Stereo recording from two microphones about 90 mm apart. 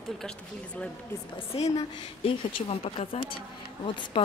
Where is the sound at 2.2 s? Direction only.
90° left.